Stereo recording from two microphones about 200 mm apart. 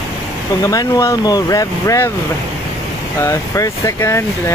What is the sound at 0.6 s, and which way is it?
Speech, 15° left (ahead or behind).